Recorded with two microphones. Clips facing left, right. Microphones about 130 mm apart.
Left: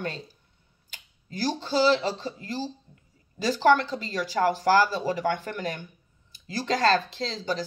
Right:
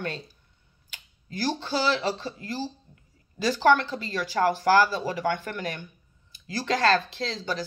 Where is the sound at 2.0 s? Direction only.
40° right (ahead or behind).